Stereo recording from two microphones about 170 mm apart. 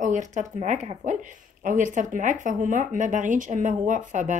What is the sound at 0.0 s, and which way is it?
Speech, 45° right (ahead or behind).